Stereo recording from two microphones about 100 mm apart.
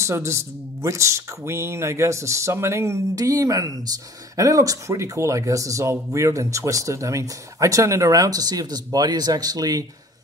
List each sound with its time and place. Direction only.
0.0 s speech: 30° right (ahead or behind)